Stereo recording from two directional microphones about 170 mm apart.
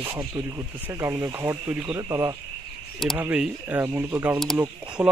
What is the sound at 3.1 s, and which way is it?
Speech, 10° right (ahead or behind).